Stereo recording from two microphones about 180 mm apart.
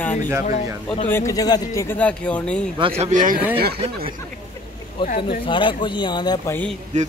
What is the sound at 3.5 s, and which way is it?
Speech, 60° right (ahead or behind).